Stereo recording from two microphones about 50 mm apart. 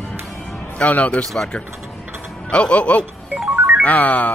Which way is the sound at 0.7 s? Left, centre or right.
Left.